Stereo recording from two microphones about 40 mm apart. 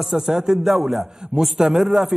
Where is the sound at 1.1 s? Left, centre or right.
Centre.